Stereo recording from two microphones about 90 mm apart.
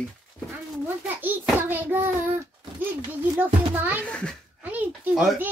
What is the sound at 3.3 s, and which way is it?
Speech, 20° right (ahead or behind).